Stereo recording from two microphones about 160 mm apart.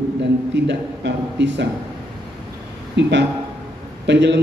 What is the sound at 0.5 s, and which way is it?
A man's voice, 90° right.